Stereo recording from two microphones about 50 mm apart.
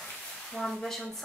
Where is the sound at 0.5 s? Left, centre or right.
Centre.